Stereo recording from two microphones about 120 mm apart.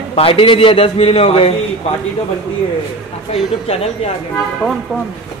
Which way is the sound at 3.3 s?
55° left (ahead or behind).